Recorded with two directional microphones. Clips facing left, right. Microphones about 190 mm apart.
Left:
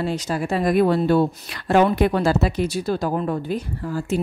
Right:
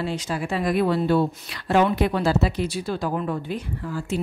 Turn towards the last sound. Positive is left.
turn(degrees=40)  # may be behind; listen again after turning